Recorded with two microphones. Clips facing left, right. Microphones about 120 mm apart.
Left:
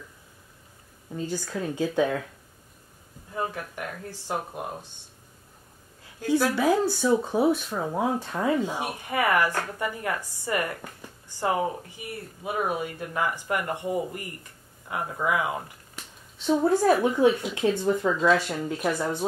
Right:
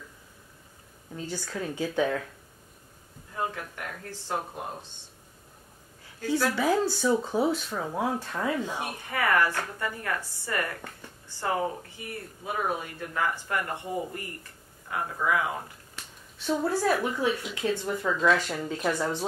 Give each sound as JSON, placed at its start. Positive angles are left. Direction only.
{"t": 1.2, "sound": "speech", "side_deg": 15}
{"t": 3.3, "sound": "speech", "side_deg": 15}
{"t": 6.2, "sound": "speech", "side_deg": 15}
{"t": 12.6, "sound": "speech", "side_deg": 15}